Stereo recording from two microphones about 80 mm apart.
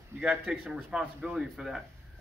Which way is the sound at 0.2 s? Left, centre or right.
Centre.